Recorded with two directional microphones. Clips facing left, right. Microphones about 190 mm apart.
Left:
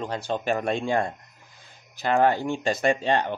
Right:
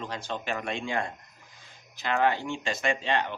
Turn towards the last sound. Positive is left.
turn(degrees=45)  # may be behind; listen again after turning